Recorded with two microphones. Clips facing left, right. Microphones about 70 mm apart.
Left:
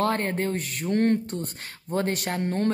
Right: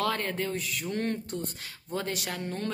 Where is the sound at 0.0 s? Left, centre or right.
Left.